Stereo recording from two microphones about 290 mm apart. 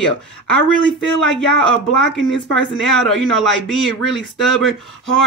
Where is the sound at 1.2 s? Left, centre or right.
Centre.